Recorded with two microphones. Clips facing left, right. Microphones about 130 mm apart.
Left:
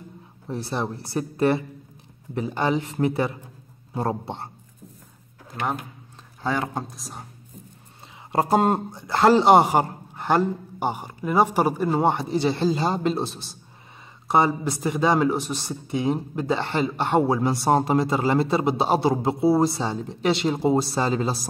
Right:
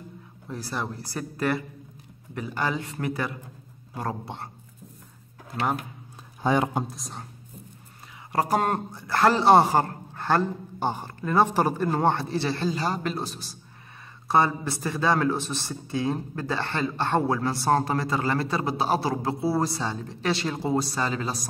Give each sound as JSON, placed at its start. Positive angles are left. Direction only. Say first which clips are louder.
{"t": 0.5, "sound": "speech", "louder": "left 4 dB", "side_deg": 25}
{"t": 6.4, "sound": "speech", "louder": "right 3 dB", "side_deg": -15}
{"t": 6.9, "sound": "a woman's voice", "louder": "even", "side_deg": 0}
{"t": 8.3, "sound": "a man's voice", "louder": "left 4 dB", "side_deg": 25}